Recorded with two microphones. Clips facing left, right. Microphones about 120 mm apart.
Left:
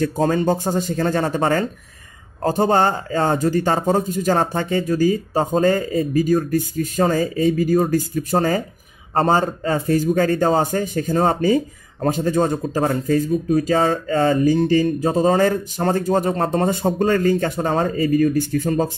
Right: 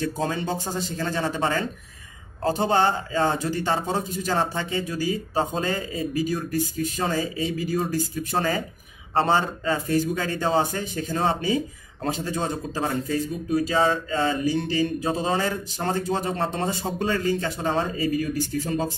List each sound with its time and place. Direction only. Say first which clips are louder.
0.0 s a man's voice: left 8 dB; 45° left (ahead or behind)